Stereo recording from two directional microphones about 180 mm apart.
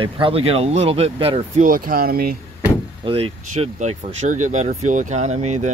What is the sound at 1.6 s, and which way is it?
Speech, 50° right (ahead or behind).